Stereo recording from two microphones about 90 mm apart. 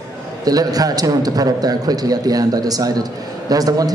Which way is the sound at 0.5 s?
45° right (ahead or behind).